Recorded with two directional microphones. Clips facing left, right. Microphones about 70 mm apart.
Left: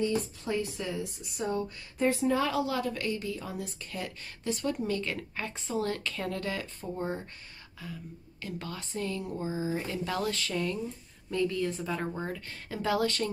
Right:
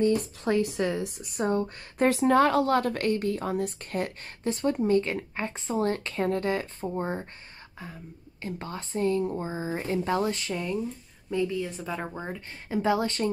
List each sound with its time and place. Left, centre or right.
0.5 s a woman's voice: right
2.0 s a woman's voice: right